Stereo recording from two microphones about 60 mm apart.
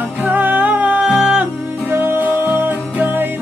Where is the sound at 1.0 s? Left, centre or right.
Centre.